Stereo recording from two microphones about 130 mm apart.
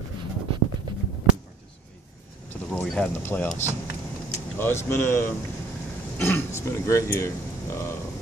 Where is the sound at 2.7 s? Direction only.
5° left (ahead or behind).